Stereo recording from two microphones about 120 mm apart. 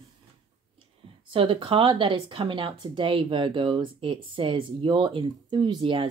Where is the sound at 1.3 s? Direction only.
45° right (ahead or behind).